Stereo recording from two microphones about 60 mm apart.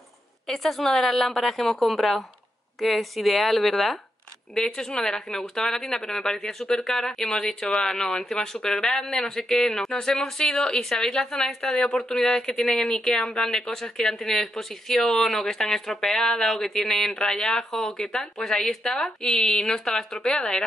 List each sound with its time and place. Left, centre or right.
0.5 s a woman's voice: centre